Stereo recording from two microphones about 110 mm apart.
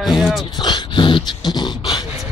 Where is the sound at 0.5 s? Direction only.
45° left (ahead or behind).